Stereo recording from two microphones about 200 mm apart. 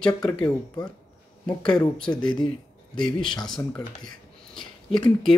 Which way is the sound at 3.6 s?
5° left (ahead or behind).